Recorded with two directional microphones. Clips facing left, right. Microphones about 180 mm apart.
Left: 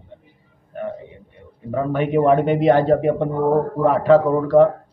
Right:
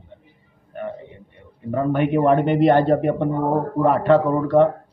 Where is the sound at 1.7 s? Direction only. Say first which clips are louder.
Even; centre (ahead or behind).